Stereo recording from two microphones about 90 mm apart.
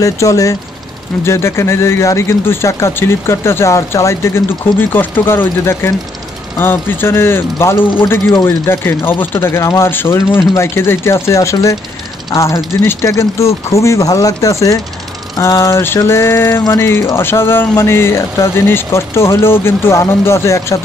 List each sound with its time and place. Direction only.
0.0 s speech: 35° left (ahead or behind)